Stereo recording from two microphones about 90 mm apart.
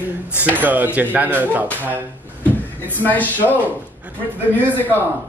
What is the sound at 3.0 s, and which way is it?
Speech, 20° left (ahead or behind).